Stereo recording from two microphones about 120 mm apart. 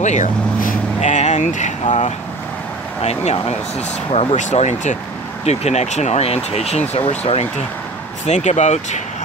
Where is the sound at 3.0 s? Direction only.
65° left (ahead or behind).